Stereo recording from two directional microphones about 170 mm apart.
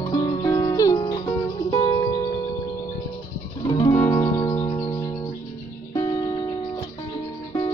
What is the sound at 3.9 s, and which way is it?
Music, 15° left (ahead or behind).